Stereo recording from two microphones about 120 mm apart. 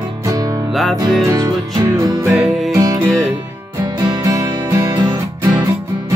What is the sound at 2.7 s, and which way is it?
Music, 30° right (ahead or behind).